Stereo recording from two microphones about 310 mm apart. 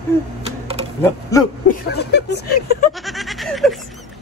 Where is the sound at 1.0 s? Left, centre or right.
Centre.